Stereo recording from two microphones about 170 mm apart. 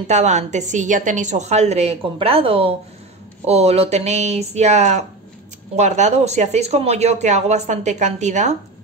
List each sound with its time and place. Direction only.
0.0 s speech: 40° right (ahead or behind)